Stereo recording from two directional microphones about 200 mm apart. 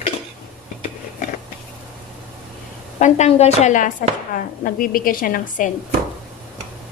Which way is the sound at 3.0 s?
35° left (ahead or behind).